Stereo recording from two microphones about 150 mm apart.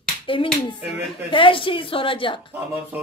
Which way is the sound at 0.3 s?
35° left (ahead or behind).